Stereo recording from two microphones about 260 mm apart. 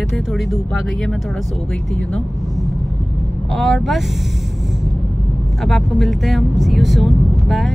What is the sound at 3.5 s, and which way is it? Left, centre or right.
Speech, centre.